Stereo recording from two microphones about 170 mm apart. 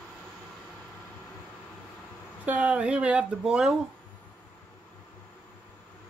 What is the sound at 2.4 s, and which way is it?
Speech, 10° right (ahead or behind).